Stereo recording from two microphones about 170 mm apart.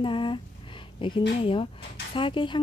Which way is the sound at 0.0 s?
30° left (ahead or behind).